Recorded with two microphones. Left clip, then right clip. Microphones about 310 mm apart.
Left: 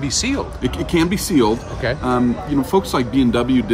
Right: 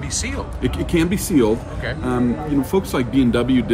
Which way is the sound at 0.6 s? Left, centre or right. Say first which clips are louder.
Left 1 dB; centre.